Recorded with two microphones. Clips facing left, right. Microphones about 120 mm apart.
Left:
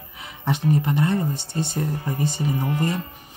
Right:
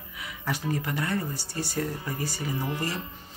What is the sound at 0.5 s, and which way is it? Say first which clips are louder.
Speech: left 8 dB; 25° left (ahead or behind).